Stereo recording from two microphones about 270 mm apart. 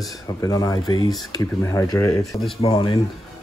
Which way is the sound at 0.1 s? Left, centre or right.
Centre.